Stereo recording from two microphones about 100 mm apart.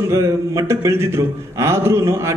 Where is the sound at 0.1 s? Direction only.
30° right (ahead or behind).